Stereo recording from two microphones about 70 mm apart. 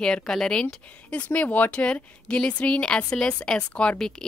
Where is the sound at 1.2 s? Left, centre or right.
Left.